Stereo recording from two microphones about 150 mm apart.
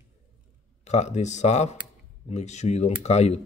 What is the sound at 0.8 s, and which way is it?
Speech, 50° left (ahead or behind).